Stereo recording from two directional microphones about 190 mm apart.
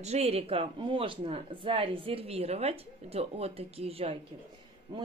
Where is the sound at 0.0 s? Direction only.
35° right (ahead or behind).